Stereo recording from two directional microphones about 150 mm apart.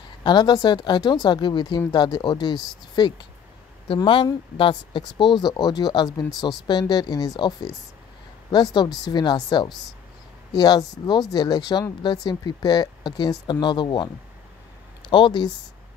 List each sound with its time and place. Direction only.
0.2 s speech: 30° left (ahead or behind)